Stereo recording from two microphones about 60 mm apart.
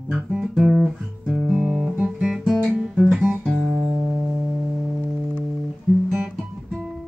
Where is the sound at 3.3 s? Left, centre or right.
Centre.